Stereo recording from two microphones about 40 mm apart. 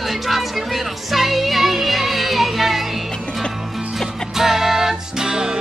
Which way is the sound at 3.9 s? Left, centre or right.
Centre.